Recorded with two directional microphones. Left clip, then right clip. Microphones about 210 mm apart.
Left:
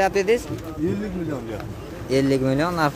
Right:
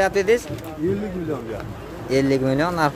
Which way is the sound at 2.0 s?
5° left (ahead or behind).